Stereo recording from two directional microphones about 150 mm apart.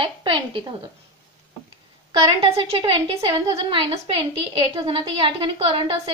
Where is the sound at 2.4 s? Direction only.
35° right (ahead or behind).